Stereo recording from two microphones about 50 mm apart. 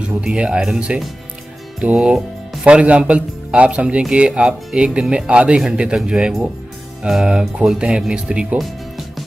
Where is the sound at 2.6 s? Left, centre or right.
Right.